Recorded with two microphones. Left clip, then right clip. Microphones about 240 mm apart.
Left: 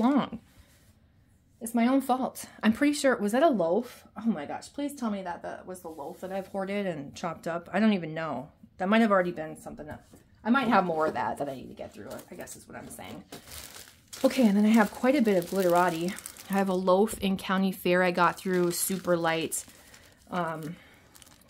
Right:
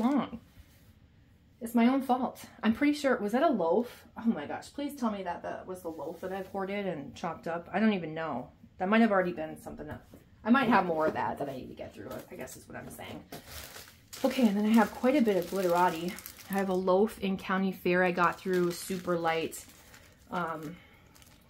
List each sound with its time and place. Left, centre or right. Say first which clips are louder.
0.0 s a sound: left 4 dB; left
1.6 s speech: left 1 dB; left
14.2 s speech: left 4 dB; left